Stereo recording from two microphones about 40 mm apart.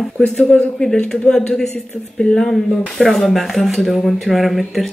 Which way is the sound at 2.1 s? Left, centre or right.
Centre.